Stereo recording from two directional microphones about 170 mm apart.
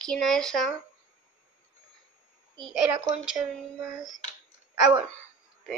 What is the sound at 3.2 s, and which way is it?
Speech, 5° right (ahead or behind).